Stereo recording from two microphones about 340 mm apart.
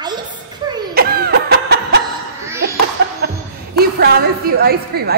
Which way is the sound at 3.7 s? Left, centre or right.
Right.